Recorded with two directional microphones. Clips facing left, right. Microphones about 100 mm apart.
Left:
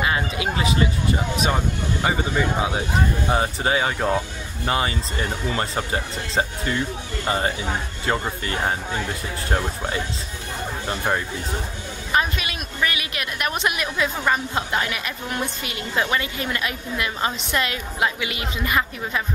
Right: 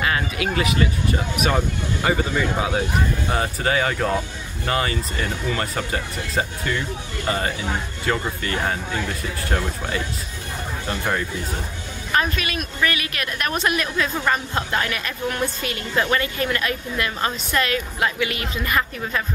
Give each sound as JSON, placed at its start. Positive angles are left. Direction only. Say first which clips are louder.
{"t": 0.0, "sound": "a woman's voice", "louder": "even", "side_deg": 20}